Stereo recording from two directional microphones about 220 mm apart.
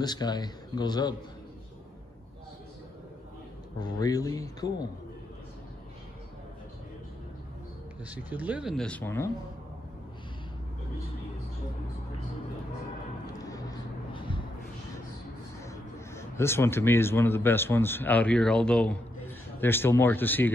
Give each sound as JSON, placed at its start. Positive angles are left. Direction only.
{"t": 0.0, "sound": "speech", "side_deg": 20}
{"t": 3.8, "sound": "speech", "side_deg": 15}
{"t": 8.0, "sound": "speech", "side_deg": -5}
{"t": 13.3, "sound": "vehicle", "side_deg": 15}
{"t": 15.6, "sound": "speech", "side_deg": 15}